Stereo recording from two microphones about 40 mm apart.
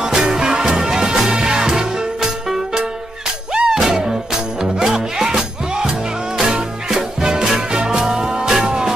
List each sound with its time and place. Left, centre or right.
0.0 s music: centre